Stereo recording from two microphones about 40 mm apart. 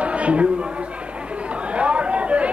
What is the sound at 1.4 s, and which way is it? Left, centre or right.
Chatter, right.